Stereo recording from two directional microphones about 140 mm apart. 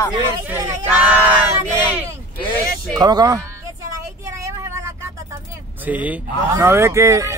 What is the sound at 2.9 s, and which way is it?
Speech, 30° right (ahead or behind).